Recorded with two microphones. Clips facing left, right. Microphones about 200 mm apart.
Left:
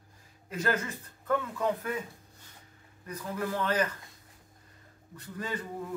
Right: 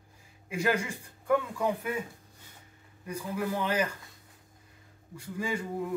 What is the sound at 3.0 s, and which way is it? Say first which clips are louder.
Speech: right 2 dB; 10° right (ahead or behind).